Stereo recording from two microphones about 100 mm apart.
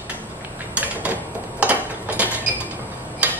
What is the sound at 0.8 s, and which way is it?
Mechanisms, 15° right (ahead or behind).